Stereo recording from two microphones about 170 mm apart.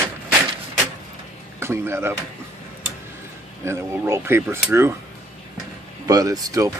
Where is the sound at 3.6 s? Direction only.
15° right (ahead or behind).